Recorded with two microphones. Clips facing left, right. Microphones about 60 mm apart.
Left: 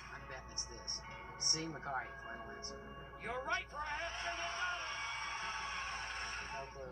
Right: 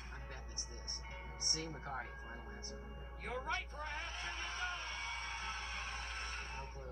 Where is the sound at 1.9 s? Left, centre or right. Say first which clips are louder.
Left 3 dB; centre.